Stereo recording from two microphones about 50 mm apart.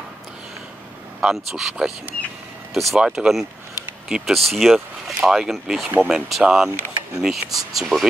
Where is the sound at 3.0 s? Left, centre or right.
Centre.